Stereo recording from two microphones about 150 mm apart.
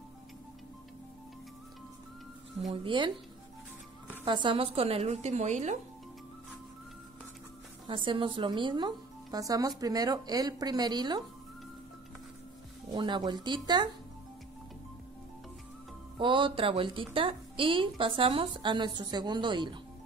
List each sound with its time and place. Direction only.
2.6 s a woman's voice: 40° right (ahead or behind)
4.2 s speech: 35° right (ahead or behind); by 5.8 s 50° right (ahead or behind)
7.9 s speech: 35° right (ahead or behind)
12.9 s speech: 30° right (ahead or behind)
16.2 s a woman's voice: 35° right (ahead or behind)